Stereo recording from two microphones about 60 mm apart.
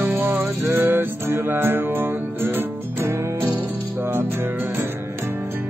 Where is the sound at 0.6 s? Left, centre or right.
Right.